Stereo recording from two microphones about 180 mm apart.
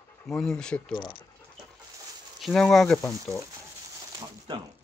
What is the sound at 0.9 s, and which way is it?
Speech, 25° left (ahead or behind).